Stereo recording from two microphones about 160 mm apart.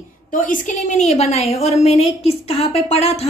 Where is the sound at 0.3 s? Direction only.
55° left (ahead or behind).